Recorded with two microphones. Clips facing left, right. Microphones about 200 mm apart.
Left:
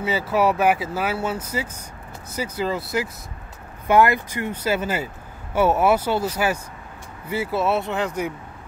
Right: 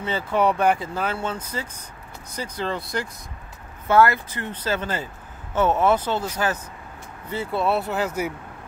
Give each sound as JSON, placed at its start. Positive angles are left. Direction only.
{"t": 0.0, "sound": "speech", "side_deg": 5}